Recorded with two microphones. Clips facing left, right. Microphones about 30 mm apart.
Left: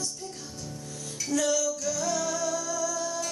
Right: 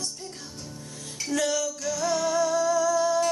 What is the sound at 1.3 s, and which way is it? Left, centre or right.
Music, right.